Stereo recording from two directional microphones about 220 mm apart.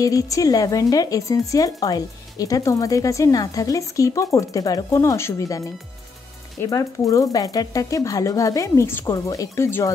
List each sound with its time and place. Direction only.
0.0 s speech: 15° left (ahead or behind)
6.6 s speech: 15° left (ahead or behind)